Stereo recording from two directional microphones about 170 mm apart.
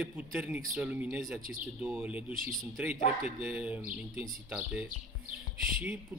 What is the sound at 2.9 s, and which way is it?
Speech, 35° left (ahead or behind).